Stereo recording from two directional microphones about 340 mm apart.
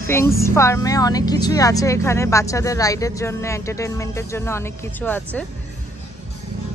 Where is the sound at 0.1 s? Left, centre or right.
Centre.